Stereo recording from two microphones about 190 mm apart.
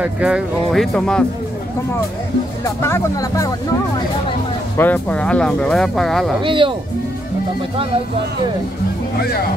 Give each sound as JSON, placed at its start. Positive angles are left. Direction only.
{"t": 0.0, "sound": "speech", "side_deg": -5}
{"t": 2.6, "sound": "speech", "side_deg": 15}
{"t": 4.7, "sound": "speech", "side_deg": 10}
{"t": 6.4, "sound": "speech", "side_deg": -25}